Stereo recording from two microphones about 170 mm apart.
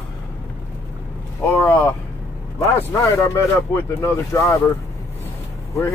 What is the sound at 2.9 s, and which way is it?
Speech, 20° left (ahead or behind).